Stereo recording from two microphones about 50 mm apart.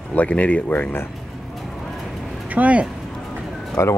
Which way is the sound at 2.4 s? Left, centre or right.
Right.